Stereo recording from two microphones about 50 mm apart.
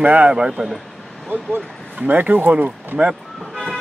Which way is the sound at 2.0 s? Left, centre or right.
Right.